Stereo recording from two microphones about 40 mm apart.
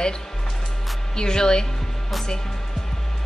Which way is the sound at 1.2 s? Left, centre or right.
Centre.